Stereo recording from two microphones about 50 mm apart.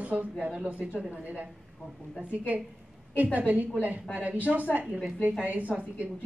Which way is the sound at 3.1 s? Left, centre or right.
Right.